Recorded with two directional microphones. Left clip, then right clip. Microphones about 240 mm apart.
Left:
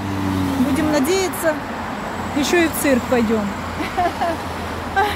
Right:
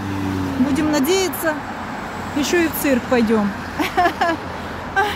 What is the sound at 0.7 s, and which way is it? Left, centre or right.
Speech, centre.